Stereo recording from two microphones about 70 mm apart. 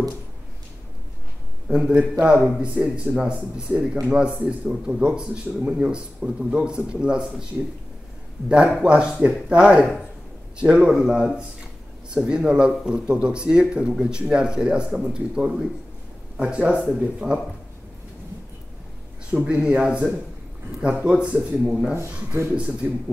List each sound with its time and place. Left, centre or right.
1.9 s speech: centre
2.3 s speech: centre
2.6 s speech: centre
8.5 s speech: centre
19.3 s speech: centre
21.9 s speech: right
22.6 s speech: centre